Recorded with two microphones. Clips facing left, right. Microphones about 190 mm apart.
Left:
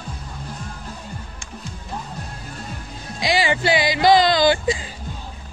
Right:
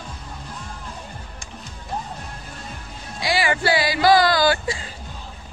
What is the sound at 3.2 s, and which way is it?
Speech, 20° left (ahead or behind).